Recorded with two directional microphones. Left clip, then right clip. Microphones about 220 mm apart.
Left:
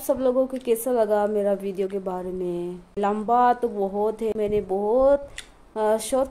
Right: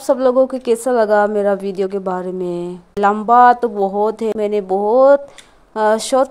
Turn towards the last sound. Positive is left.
turn(degrees=-15)  # may be behind; listen again after turning